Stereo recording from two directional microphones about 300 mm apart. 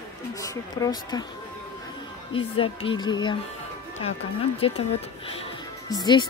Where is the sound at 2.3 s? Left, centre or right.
Centre.